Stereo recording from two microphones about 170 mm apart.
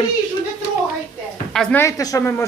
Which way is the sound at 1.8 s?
20° left (ahead or behind).